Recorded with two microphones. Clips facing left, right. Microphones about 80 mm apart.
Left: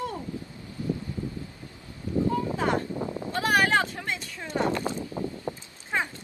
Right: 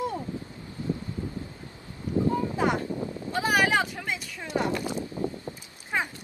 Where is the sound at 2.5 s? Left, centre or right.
Centre.